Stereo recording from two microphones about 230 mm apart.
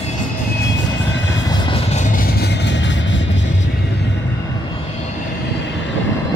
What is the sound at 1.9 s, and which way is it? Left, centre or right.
Vehicle, left.